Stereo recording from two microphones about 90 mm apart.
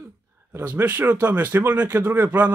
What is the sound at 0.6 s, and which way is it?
Speech, 20° right (ahead or behind).